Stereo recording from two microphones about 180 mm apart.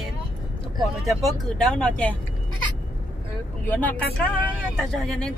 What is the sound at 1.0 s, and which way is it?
Speech, centre (ahead or behind).